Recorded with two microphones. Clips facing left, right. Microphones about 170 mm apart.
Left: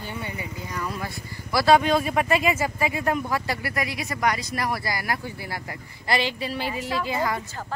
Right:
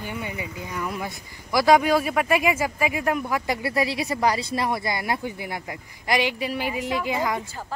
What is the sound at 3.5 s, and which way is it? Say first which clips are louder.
Speech: right 4 dB; 25° right (ahead or behind).